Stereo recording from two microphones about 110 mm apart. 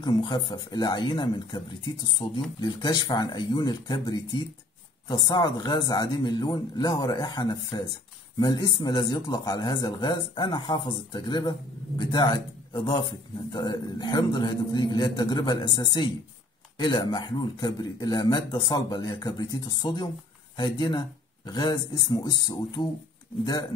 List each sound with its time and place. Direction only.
0.0 s speech: 45° left (ahead or behind)
2.2 s speech: 60° left (ahead or behind)
2.6 s speech: 40° left (ahead or behind)